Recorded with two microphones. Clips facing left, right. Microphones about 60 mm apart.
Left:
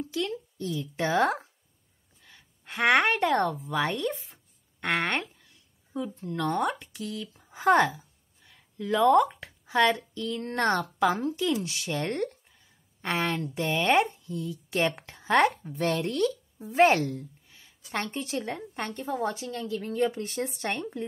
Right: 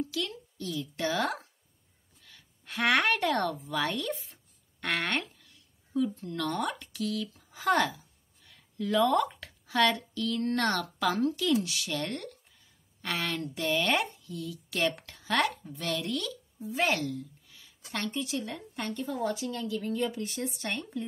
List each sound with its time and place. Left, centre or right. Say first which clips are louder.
0.1 s a woman's voice: left 4 dB; left
18.1 s a woman's voice: left 2 dB; left